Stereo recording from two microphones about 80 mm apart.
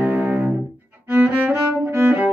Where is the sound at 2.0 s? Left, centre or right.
Right.